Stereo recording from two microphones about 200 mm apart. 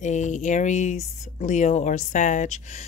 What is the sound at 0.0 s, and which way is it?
Speech, 35° left (ahead or behind).